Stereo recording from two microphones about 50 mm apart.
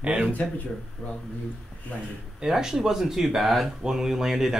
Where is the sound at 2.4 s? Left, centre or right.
Centre.